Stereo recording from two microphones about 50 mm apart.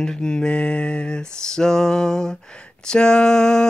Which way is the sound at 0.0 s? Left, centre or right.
Centre.